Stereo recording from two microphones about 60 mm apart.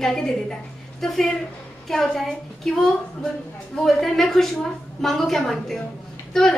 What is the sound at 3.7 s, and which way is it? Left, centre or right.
A woman's voice, centre.